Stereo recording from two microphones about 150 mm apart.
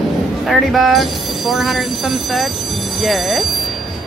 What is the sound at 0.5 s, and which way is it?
Speech, centre (ahead or behind).